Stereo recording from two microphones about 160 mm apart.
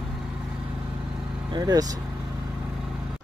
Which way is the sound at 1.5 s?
25° right (ahead or behind).